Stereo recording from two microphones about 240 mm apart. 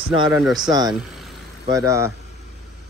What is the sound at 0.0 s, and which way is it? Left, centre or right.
Speech, centre.